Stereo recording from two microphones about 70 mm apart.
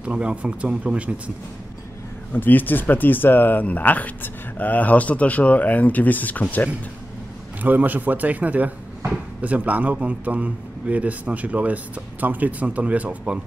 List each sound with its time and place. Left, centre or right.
0.0 s speech: centre
2.3 s speech: left
7.6 s speech: right